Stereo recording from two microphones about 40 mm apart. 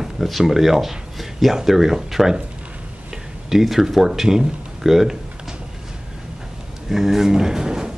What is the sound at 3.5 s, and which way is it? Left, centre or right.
Speech, centre.